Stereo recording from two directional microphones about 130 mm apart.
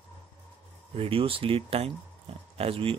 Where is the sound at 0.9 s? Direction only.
45° right (ahead or behind).